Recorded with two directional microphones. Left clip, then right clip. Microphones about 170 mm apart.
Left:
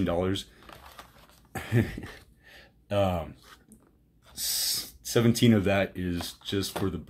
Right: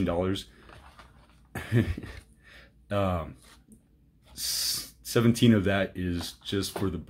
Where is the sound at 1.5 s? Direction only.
Centre (ahead or behind).